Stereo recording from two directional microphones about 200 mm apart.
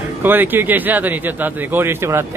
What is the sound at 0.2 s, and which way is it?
A man's voice, 10° right (ahead or behind).